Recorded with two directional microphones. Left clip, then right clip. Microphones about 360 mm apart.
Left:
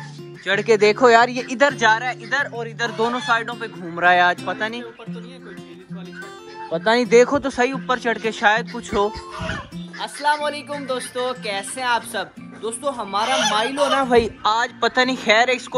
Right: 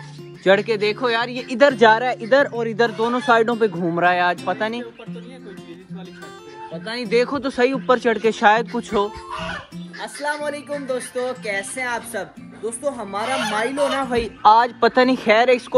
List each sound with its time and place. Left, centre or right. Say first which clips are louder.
0.4 s speech: even; centre
6.7 s speech: left 7 dB; centre
13.2 s speech: left 3 dB; left
14.4 s speech: right 6 dB; centre